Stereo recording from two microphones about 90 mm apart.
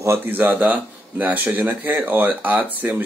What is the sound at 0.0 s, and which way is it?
Speech, 25° right (ahead or behind).